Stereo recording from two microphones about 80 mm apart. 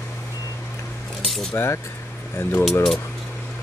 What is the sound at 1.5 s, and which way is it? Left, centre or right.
Speech, left.